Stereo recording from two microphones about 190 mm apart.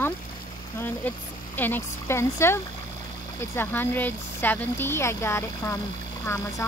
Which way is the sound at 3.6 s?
10° left (ahead or behind).